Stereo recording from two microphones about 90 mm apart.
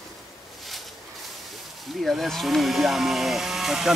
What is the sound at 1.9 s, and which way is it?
Speech, centre (ahead or behind).